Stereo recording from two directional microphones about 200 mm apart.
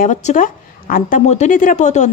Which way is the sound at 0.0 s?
35° left (ahead or behind).